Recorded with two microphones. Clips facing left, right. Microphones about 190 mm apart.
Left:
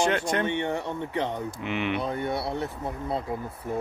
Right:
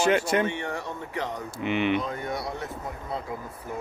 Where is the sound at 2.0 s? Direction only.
30° left (ahead or behind).